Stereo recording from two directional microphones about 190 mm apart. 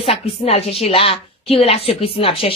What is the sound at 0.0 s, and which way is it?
A woman's voice, 30° left (ahead or behind).